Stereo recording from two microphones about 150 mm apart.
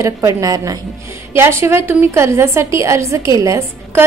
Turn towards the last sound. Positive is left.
turn(degrees=-20)  # may be behind; listen again after turning